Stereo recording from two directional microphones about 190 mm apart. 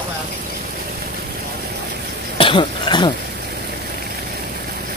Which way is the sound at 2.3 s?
25° left (ahead or behind).